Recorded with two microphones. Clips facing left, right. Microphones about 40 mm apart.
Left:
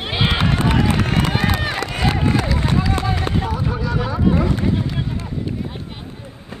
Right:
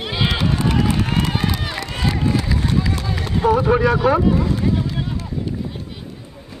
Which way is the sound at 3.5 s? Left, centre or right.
Right.